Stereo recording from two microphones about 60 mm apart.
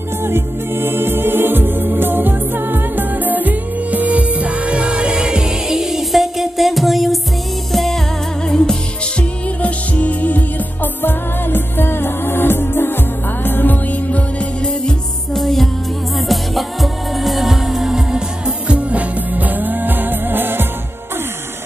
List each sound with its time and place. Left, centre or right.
0.2 s music: right; by 8.7 s centre
9.6 s music: left
14.7 s music: centre
18.7 s music: right